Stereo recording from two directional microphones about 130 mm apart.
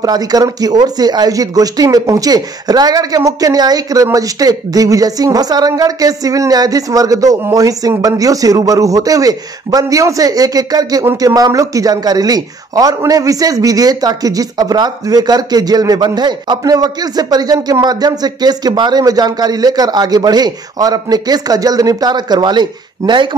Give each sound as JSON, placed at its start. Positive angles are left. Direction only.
{"t": 0.0, "sound": "speech", "side_deg": -30}